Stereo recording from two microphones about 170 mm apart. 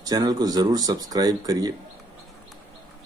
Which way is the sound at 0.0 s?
20° right (ahead or behind).